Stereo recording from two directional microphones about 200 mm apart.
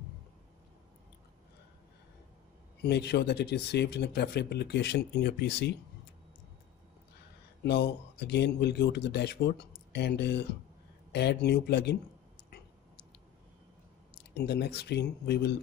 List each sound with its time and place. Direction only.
2.8 s speech: 55° left (ahead or behind)
7.6 s speech: 55° left (ahead or behind)
14.3 s speech: 55° left (ahead or behind)